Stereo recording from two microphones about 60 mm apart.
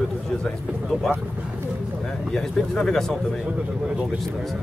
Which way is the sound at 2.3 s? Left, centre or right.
Centre.